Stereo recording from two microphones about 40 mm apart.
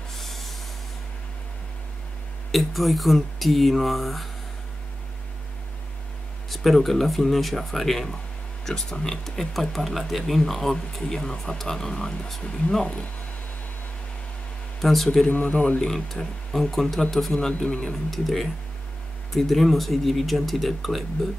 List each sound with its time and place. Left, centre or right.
0.1 s a sound: centre
2.5 s speech: centre
6.5 s speech: centre; by 13.0 s left
14.8 s speech: centre
15.2 s speech: left
15.8 s speech: centre
18.1 s speech: centre